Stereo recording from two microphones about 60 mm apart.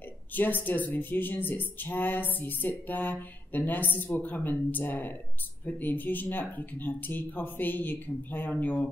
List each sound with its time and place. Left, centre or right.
0.3 s speech: left